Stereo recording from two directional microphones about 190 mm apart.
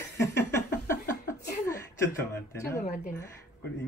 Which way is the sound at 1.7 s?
15° left (ahead or behind).